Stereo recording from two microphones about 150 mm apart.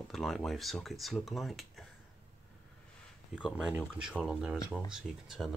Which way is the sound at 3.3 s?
5° right (ahead or behind).